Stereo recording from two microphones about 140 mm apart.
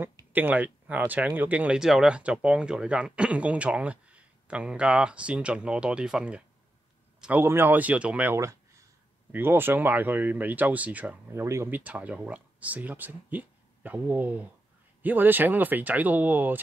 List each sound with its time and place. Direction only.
0.3 s speech: 15° right (ahead or behind)